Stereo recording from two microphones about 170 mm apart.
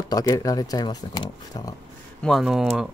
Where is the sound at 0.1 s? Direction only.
20° left (ahead or behind).